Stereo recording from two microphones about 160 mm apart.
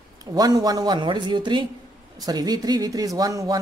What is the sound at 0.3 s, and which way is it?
Speech, 25° right (ahead or behind).